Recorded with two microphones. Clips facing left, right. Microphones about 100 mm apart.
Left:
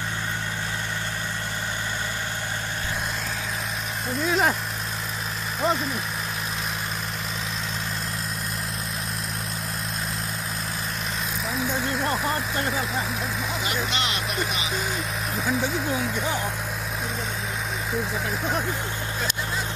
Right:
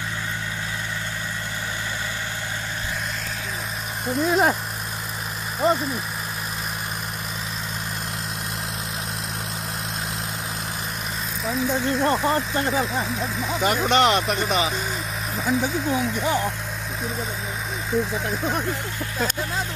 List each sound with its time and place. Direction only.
4.3 s speech: 5° right (ahead or behind)
5.6 s speech: 5° right (ahead or behind)
12.0 s speech: 5° right (ahead or behind)
13.7 s speech: 50° right (ahead or behind)
15.3 s speech: centre (ahead or behind)
17.9 s speech: 5° left (ahead or behind)